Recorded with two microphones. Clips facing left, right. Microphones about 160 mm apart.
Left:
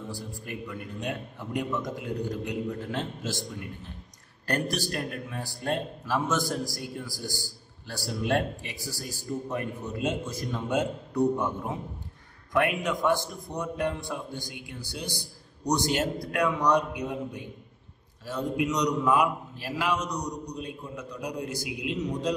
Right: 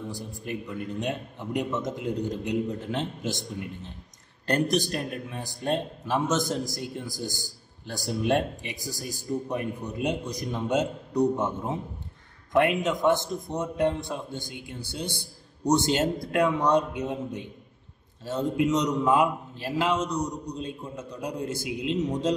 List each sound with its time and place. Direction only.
0.1 s speech: 20° right (ahead or behind)